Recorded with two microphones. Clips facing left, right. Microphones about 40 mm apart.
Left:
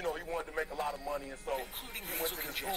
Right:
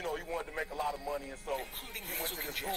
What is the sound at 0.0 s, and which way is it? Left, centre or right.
Radio, centre.